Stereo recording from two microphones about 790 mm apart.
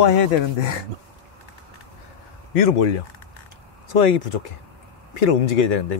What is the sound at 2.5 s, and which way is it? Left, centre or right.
Speech, left.